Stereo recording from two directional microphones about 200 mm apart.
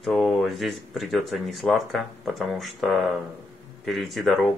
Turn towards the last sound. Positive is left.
turn(degrees=0)  # may be behind; listen again after turning